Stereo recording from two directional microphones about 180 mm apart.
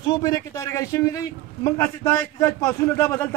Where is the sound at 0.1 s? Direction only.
20° left (ahead or behind).